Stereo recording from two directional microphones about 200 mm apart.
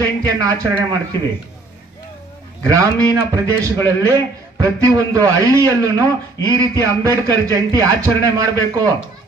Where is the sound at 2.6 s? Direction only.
15° right (ahead or behind).